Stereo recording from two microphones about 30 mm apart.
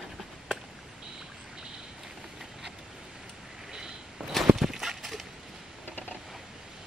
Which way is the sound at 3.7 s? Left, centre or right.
Centre.